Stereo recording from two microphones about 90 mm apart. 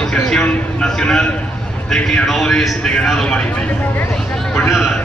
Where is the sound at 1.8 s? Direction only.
10° left (ahead or behind).